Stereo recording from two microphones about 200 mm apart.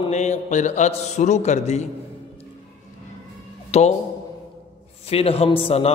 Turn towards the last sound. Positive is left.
turn(degrees=30)  # may be behind; listen again after turning